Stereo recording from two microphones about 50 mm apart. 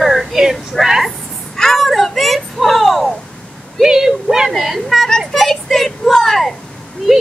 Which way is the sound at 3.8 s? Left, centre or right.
Centre.